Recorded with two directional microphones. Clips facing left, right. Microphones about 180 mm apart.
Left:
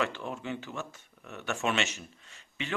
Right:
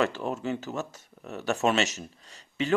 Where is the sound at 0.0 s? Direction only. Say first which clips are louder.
Right 6 dB; 40° right (ahead or behind).